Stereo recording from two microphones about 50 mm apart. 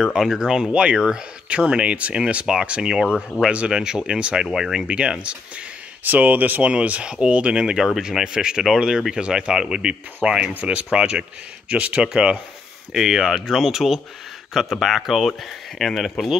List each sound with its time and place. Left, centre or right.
0.0 s speech: centre
6.0 s speech: right
6.6 s speech: right
12.9 s speech: centre